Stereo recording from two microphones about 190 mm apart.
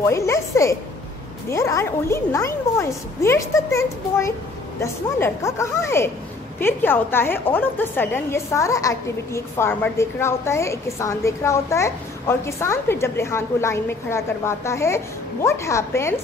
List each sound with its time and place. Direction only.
0.0 s a woman's voice: 15° left (ahead or behind)